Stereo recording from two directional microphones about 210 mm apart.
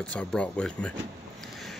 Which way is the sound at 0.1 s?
5° left (ahead or behind).